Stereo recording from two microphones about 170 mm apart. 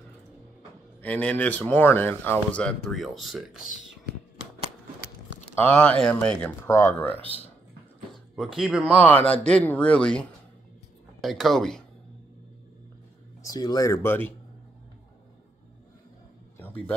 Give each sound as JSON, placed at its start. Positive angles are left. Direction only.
{"t": 1.0, "sound": "speech", "side_deg": 10}
{"t": 5.8, "sound": "speech", "side_deg": 5}
{"t": 8.4, "sound": "speech", "side_deg": 0}
{"t": 9.0, "sound": "speech", "side_deg": 10}
{"t": 13.4, "sound": "speech", "side_deg": 20}
{"t": 16.5, "sound": "a sound", "side_deg": 10}